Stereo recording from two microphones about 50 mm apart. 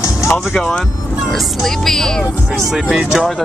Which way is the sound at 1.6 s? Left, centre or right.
Centre.